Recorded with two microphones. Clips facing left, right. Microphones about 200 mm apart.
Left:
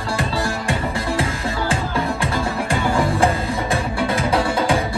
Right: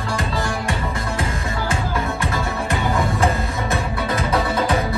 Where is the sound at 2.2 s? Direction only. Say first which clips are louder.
Left 2 dB; 30° left (ahead or behind).